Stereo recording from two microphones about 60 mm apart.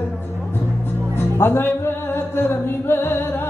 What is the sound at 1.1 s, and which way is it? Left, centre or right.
Music, left.